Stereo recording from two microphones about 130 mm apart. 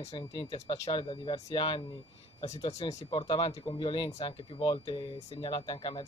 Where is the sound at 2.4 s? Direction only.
60° left (ahead or behind).